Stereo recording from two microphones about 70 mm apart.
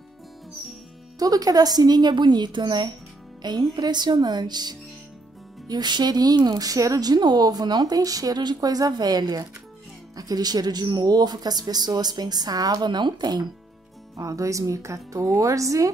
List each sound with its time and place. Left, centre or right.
1.2 s a woman's voice: right
7.1 s speech: right
14.1 s a woman's voice: right